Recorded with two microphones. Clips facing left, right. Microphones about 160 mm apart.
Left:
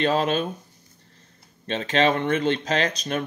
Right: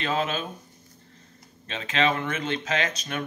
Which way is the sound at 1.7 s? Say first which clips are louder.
Left 4 dB; 35° left (ahead or behind).